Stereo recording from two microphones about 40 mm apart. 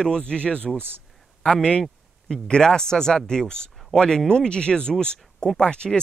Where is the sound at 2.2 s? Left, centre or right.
Centre.